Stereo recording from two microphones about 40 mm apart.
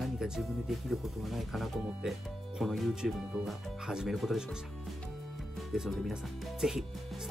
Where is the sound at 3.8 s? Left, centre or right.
Centre.